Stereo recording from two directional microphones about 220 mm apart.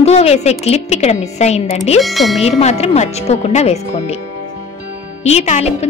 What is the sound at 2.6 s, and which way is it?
A woman's voice, 30° left (ahead or behind).